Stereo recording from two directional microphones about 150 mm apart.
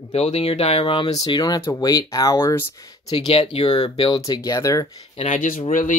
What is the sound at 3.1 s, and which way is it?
Speech, 40° left (ahead or behind).